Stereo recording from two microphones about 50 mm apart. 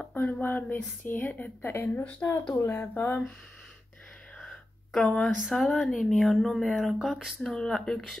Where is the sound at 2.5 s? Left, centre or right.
Left.